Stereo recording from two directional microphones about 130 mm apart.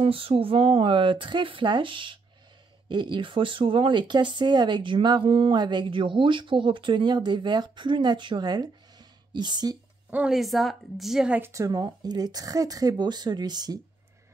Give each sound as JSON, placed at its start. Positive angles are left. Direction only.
{"t": 0.0, "sound": "speech", "side_deg": -45}
{"t": 10.0, "sound": "speech", "side_deg": -5}
{"t": 11.5, "sound": "speech", "side_deg": -30}